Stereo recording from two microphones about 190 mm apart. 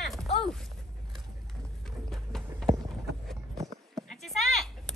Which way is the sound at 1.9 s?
Centre (ahead or behind).